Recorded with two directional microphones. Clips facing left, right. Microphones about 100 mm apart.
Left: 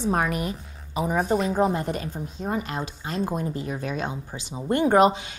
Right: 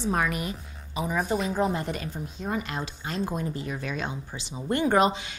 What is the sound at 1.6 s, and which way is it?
Speech, 35° left (ahead or behind).